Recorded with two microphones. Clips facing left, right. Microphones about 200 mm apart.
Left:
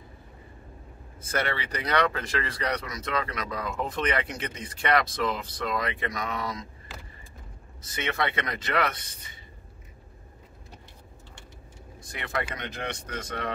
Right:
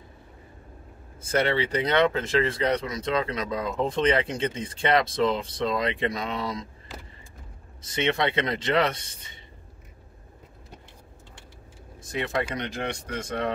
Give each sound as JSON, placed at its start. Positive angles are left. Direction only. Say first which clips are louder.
{"t": 1.2, "sound": "speech", "louder": "right 6 dB", "side_deg": -30}
{"t": 7.9, "sound": "speech", "louder": "right 5 dB", "side_deg": -25}
{"t": 12.1, "sound": "speech", "louder": "right 5 dB", "side_deg": -25}